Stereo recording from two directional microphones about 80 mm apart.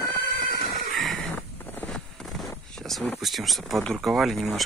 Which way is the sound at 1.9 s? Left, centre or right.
Centre.